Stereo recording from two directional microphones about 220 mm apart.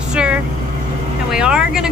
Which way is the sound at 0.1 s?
5° right (ahead or behind).